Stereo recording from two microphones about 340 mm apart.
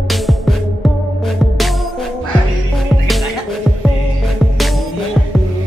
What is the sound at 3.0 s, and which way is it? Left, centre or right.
Music, centre.